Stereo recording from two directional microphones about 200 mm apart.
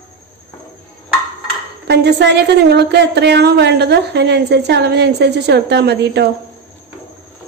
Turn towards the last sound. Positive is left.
turn(degrees=-55)  # may be behind; listen again after turning